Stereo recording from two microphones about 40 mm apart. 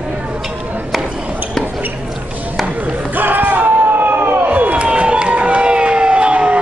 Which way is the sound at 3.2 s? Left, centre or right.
Right.